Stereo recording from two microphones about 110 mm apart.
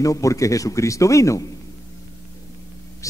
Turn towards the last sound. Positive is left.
turn(degrees=30)  # may be behind; listen again after turning